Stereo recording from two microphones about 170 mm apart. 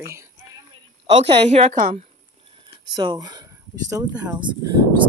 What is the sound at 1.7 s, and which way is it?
Speech, 55° right (ahead or behind).